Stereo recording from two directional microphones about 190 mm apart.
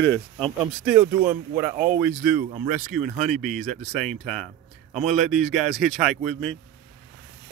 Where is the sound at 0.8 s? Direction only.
5° right (ahead or behind).